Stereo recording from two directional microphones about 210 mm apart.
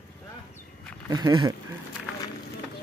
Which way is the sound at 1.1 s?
20° right (ahead or behind).